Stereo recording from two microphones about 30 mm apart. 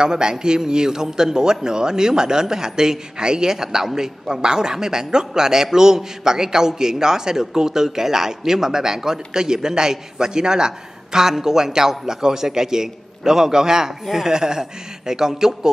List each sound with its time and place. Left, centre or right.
0.0 s a man's voice: right